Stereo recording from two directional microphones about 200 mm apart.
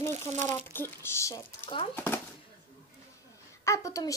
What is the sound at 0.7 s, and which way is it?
Speech, 10° left (ahead or behind).